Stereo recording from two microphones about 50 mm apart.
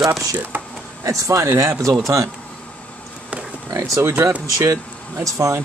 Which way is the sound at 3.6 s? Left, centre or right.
Right.